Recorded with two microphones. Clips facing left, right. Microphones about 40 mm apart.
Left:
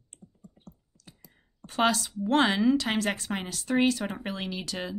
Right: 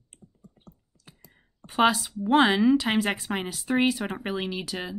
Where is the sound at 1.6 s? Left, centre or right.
Centre.